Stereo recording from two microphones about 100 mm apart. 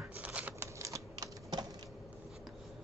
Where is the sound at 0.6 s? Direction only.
30° right (ahead or behind).